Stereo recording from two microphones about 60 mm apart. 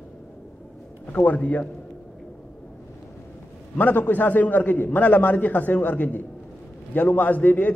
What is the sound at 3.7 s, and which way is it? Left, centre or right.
A man's voice, left.